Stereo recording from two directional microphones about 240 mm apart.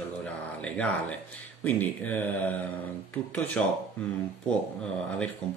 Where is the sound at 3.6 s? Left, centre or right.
Centre.